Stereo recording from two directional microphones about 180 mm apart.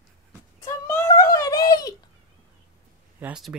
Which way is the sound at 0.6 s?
20° left (ahead or behind).